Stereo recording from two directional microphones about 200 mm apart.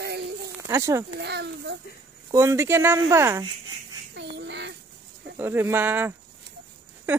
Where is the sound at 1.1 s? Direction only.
55° right (ahead or behind).